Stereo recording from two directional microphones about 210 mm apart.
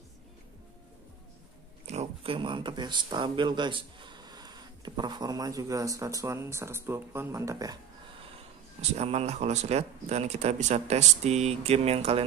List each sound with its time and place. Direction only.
1.9 s speech: 30° right (ahead or behind)
8.9 s speech: 30° right (ahead or behind)